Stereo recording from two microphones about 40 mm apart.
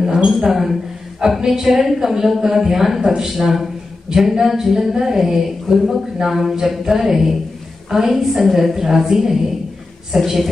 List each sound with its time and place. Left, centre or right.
0.0 s speech: centre